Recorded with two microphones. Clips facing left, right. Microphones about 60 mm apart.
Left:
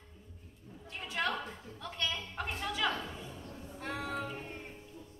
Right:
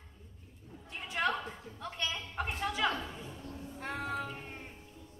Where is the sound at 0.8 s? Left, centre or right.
Centre.